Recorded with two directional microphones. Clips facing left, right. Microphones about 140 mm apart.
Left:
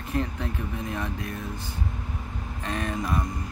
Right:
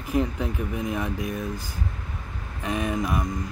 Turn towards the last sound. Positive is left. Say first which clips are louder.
# right 3 dB
turn(degrees=-10)  # may be behind; listen again after turning